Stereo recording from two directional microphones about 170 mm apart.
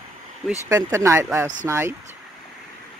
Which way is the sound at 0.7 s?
15° right (ahead or behind).